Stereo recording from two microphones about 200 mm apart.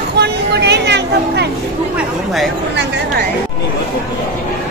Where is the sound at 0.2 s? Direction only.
55° right (ahead or behind).